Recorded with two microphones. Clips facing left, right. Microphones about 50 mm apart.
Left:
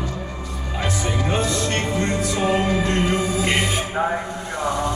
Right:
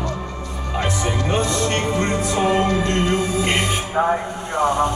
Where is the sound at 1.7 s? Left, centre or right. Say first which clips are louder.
Right 2 dB; right.